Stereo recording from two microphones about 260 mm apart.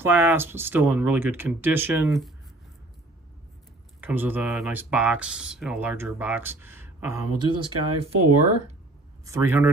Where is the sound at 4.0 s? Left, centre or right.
Centre.